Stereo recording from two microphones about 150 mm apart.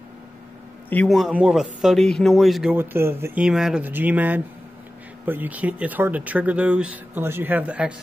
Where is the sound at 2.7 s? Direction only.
15° right (ahead or behind).